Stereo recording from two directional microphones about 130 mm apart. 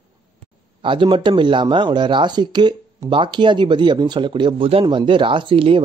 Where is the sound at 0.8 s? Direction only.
40° right (ahead or behind).